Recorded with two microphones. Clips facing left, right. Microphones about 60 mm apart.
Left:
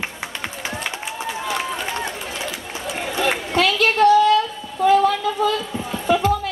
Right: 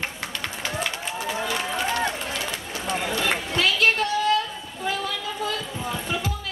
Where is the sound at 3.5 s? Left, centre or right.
Left.